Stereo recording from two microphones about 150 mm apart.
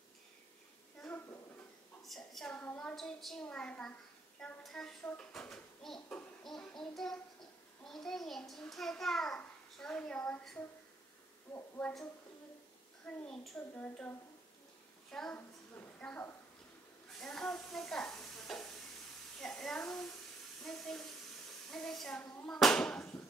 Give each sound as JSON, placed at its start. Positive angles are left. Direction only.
{"t": 1.0, "sound": "a sound", "side_deg": 15}
{"t": 2.0, "sound": "a woman's voice", "side_deg": 0}
{"t": 4.4, "sound": "a sound", "side_deg": 5}
{"t": 11.5, "sound": "a woman's voice", "side_deg": 15}
{"t": 13.0, "sound": "a child's voice", "side_deg": 0}
{"t": 17.2, "sound": "stir", "side_deg": 5}
{"t": 19.4, "sound": "a child's voice", "side_deg": 5}